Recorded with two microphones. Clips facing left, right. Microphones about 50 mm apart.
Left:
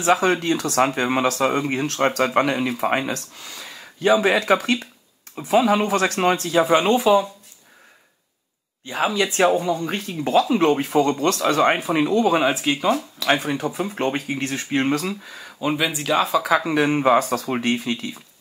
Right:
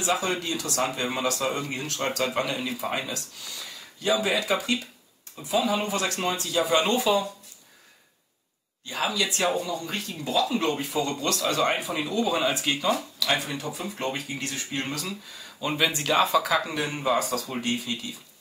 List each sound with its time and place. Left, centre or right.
0.0 s speech: left
5.9 s speech: left
6.7 s speech: left
8.8 s speech: left
12.4 s speech: left
15.6 s speech: centre
16.6 s speech: left